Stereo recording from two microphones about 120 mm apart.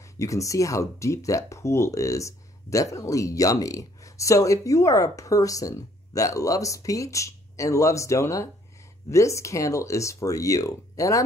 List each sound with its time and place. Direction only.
0.0 s speech: 25° left (ahead or behind)